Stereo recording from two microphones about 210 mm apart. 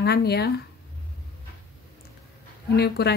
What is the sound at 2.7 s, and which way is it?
Speech, 50° left (ahead or behind).